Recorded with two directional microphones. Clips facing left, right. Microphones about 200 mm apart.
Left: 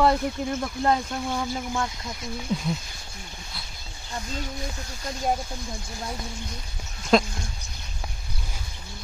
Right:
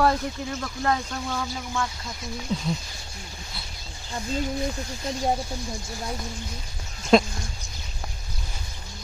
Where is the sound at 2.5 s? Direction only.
10° left (ahead or behind).